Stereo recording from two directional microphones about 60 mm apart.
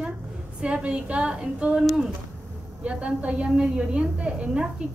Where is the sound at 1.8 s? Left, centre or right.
Centre.